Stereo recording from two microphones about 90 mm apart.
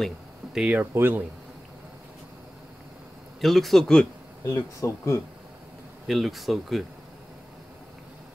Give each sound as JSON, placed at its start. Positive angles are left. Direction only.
{"t": 0.6, "sound": "speech", "side_deg": -15}
{"t": 0.9, "sound": "speech", "side_deg": -25}
{"t": 3.3, "sound": "a man's voice", "side_deg": 0}
{"t": 4.5, "sound": "speech", "side_deg": 35}
{"t": 6.0, "sound": "a man's voice", "side_deg": 0}